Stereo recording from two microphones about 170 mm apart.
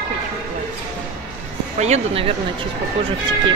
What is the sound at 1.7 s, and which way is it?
Speech, 40° right (ahead or behind).